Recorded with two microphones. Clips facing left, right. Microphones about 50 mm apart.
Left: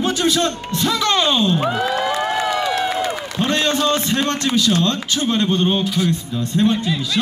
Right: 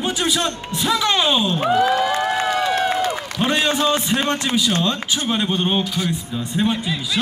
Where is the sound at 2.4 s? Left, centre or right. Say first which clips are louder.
Even; right.